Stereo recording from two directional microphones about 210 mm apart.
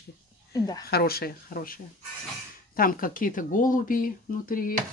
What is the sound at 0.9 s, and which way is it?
Speech, 50° left (ahead or behind).